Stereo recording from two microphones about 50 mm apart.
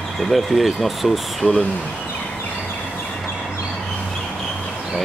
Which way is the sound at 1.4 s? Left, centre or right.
Left.